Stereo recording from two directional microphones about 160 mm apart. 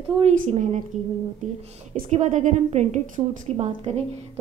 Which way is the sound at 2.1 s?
50° right (ahead or behind).